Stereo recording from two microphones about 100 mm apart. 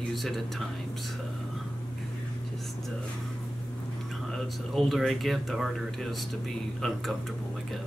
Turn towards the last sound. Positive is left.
turn(degrees=0)  # may be behind; listen again after turning